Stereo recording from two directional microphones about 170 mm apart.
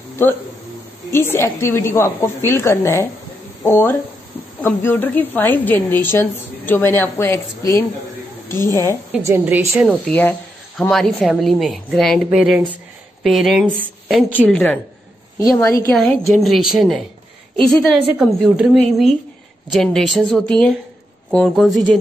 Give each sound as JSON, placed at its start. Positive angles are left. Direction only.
{"t": 0.1, "sound": "a sound", "side_deg": 15}
{"t": 1.1, "sound": "a woman's voice", "side_deg": 15}
{"t": 9.1, "sound": "a woman's voice", "side_deg": -10}
{"t": 10.0, "sound": "a woman's voice", "side_deg": 10}
{"t": 12.3, "sound": "a woman's voice", "side_deg": -5}
{"t": 15.9, "sound": "a woman's voice", "side_deg": 5}
{"t": 18.1, "sound": "a woman's voice", "side_deg": -10}